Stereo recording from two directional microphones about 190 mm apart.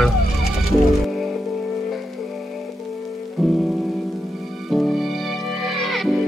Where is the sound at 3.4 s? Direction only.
Centre (ahead or behind).